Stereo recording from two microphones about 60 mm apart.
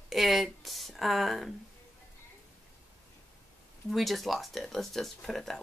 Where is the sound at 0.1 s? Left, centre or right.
Centre.